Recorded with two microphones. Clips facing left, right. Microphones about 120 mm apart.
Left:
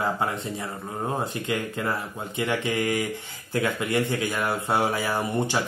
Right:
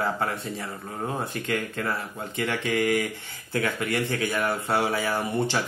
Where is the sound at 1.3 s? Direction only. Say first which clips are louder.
Left 1 dB; 20° left (ahead or behind).